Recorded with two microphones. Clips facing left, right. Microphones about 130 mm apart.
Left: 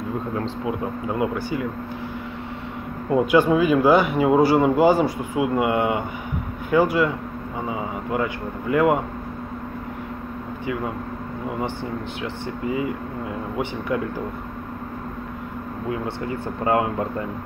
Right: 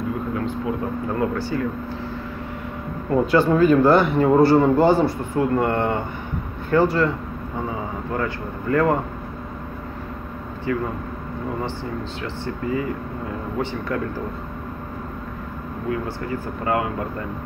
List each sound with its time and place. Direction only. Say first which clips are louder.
0.7 s speech: right 1 dB; 15° left (ahead or behind)
3.1 s a man's voice: even; 15° left (ahead or behind)
13.6 s speech: even; 15° left (ahead or behind)
16.6 s speech: left 2 dB; 25° left (ahead or behind)